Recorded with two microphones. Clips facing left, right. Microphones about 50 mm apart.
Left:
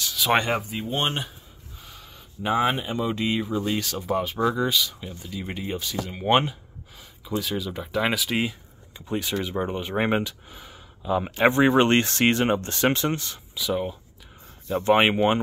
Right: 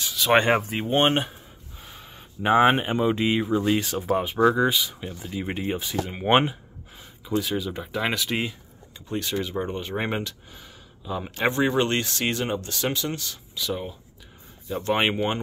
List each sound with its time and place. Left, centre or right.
0.1 s a sound: centre
0.4 s speech: right
0.7 s speech: right
0.9 s speech: right
1.8 s a sound: right
3.1 s speech: right
4.1 s speech: centre
7.2 s speech: centre; by 13.4 s left
13.6 s speech: centre